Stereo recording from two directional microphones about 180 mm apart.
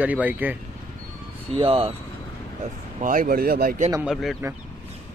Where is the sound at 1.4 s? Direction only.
30° right (ahead or behind).